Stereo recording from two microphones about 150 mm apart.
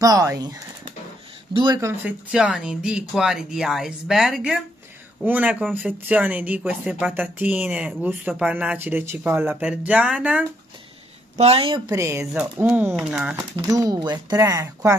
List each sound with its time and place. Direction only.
0.0 s speech: 20° right (ahead or behind)
1.8 s speech: 20° right (ahead or behind)
2.3 s speech: 5° right (ahead or behind)
11.3 s speech: 40° right (ahead or behind)
11.8 s speech: 20° right (ahead or behind)
13.6 s speech: 25° right (ahead or behind)